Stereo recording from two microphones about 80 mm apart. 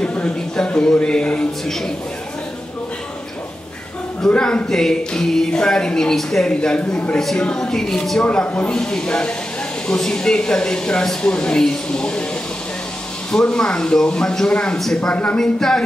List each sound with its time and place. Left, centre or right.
0.0 s speech: centre
4.3 s speech: centre
7.2 s speech: centre
13.3 s speech: centre